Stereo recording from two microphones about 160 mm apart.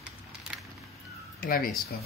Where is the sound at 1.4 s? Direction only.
65° left (ahead or behind).